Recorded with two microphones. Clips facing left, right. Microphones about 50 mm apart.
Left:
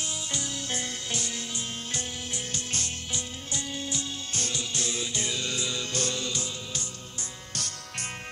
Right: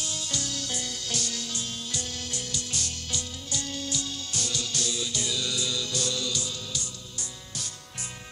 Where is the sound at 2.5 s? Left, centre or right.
Left.